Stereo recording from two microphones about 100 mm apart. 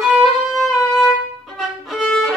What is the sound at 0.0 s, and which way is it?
Violin, 5° right (ahead or behind).